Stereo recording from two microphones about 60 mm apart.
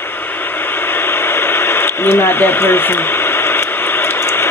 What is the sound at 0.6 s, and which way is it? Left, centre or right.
Radio, left.